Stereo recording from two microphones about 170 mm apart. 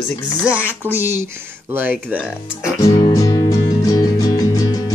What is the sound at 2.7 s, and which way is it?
Music, 20° left (ahead or behind).